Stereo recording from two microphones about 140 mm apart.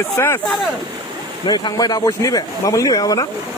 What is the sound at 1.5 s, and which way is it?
Speech, 30° left (ahead or behind).